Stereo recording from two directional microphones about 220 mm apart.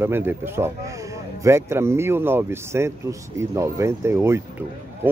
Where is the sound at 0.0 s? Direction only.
10° right (ahead or behind).